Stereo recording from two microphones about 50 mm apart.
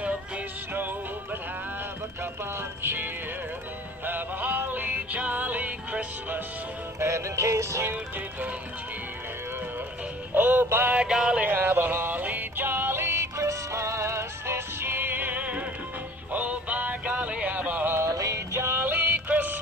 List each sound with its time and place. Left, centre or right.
2.8 s music: right
7.0 s music: right
10.3 s synthetic singing: right
11.0 s music: centre
11.4 s music: right
17.9 s music: right